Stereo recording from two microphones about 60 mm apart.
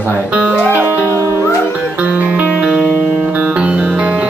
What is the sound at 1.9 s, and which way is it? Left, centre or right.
Music, right.